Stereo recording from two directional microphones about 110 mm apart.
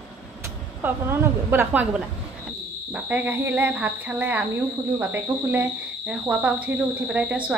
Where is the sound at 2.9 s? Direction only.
15° right (ahead or behind).